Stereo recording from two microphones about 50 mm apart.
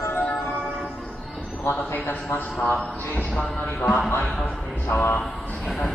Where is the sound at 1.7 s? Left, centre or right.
Left.